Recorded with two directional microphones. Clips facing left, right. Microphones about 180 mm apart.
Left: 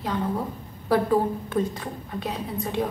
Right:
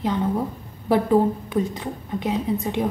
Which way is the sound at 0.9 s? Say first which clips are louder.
Right 3 dB; 20° right (ahead or behind).